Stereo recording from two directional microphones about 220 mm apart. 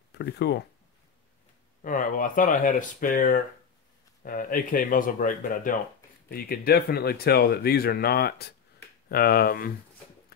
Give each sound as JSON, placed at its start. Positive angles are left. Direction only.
{"t": 0.2, "sound": "speech", "side_deg": 50}
{"t": 1.8, "sound": "speech", "side_deg": 35}